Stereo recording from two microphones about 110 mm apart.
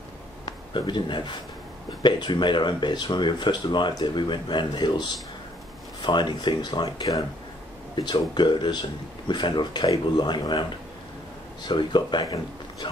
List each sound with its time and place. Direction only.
0.5 s speech: 45° left (ahead or behind)
6.0 s speech: 40° left (ahead or behind)
11.6 s speech: 45° left (ahead or behind)